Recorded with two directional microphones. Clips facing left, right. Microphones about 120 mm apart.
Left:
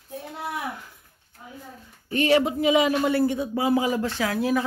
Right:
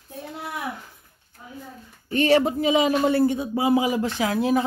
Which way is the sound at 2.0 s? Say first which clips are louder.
Right 2 dB; 30° right (ahead or behind).